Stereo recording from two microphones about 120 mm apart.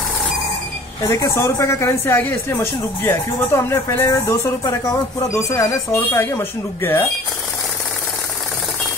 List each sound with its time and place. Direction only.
1.0 s speech: 25° left (ahead or behind)